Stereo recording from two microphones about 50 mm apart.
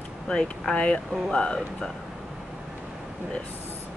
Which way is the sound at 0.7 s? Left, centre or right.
Centre.